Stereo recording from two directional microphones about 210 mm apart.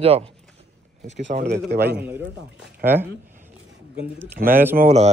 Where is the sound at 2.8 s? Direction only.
45° right (ahead or behind).